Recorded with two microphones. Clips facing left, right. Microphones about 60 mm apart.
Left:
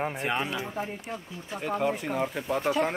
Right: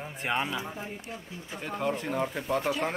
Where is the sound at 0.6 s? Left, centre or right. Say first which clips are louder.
Left 4 dB; left.